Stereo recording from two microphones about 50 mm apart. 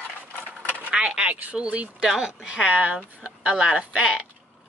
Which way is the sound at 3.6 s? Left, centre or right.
Centre.